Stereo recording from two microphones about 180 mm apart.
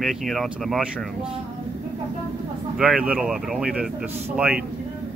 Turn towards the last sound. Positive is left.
turn(degrees=-10)  # may be behind; listen again after turning